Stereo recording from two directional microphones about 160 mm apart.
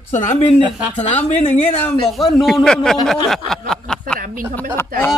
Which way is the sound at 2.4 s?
Centre (ahead or behind).